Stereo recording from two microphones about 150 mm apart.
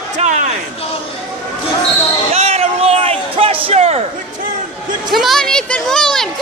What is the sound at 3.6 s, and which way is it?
Speech, 45° right (ahead or behind).